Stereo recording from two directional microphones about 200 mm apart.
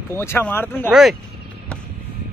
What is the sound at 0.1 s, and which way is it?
Speech, 10° left (ahead or behind).